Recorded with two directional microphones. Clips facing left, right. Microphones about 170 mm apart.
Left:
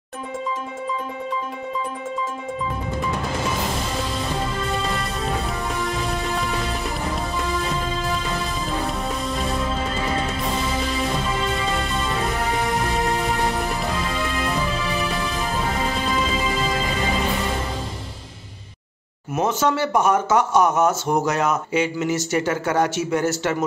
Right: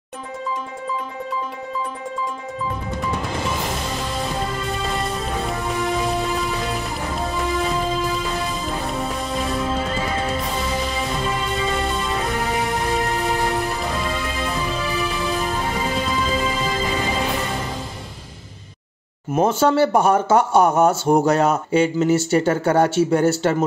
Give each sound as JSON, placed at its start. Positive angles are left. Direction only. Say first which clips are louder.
{"t": 19.3, "sound": "speech", "louder": "right 4 dB", "side_deg": -30}